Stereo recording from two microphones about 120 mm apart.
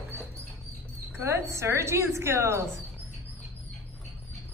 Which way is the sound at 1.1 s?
20° right (ahead or behind).